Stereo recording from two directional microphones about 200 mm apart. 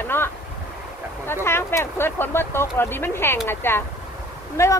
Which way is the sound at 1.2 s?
10° left (ahead or behind).